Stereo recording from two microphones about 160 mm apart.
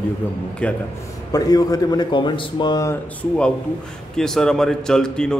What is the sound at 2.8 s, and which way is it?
A man's voice, 5° left (ahead or behind).